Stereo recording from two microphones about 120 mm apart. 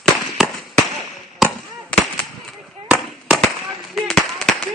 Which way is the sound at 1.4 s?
Centre (ahead or behind).